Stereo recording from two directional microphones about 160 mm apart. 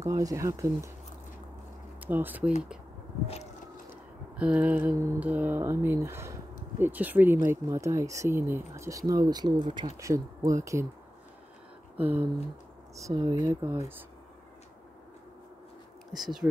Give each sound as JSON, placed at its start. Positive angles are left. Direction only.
{"t": 0.0, "sound": "speech", "side_deg": -20}
{"t": 2.0, "sound": "speech", "side_deg": -10}
{"t": 4.4, "sound": "speech", "side_deg": -10}
{"t": 12.0, "sound": "speech", "side_deg": -10}
{"t": 16.1, "sound": "speech", "side_deg": 0}